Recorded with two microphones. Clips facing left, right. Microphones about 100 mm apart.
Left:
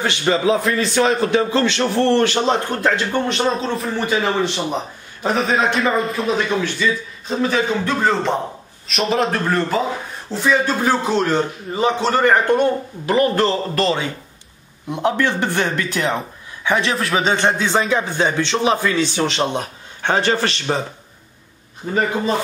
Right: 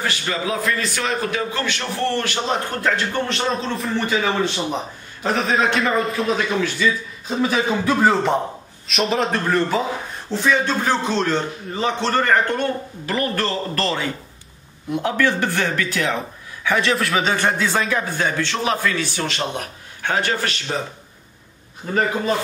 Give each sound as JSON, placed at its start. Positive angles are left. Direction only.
{"t": 0.3, "sound": "speech", "side_deg": 30}
{"t": 3.5, "sound": "a man's voice", "side_deg": 0}
{"t": 4.0, "sound": "a man's voice", "side_deg": 15}
{"t": 5.2, "sound": "a man's voice", "side_deg": 0}
{"t": 16.7, "sound": "a man's voice", "side_deg": 0}
{"t": 17.3, "sound": "a man's voice", "side_deg": 20}
{"t": 21.8, "sound": "a man's voice", "side_deg": 10}